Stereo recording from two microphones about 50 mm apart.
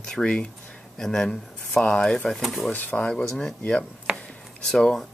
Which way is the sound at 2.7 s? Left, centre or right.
Left.